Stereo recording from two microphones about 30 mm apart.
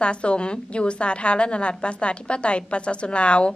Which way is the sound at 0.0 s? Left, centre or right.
Left.